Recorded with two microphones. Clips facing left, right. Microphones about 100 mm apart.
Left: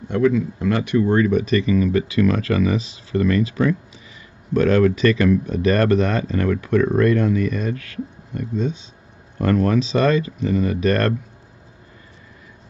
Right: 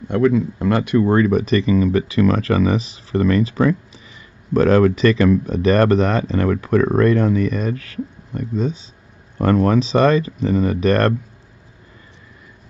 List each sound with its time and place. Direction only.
0.1 s speech: 45° right (ahead or behind)